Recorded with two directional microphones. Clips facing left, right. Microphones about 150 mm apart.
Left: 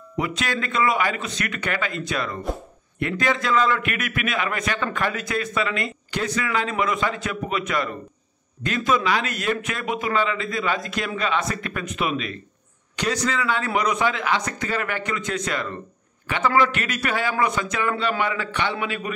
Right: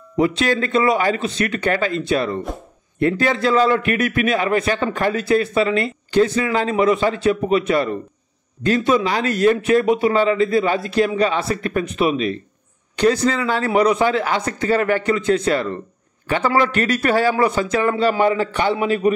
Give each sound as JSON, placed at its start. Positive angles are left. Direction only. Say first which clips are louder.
{"t": 0.2, "sound": "speech", "louder": "right 8 dB", "side_deg": -30}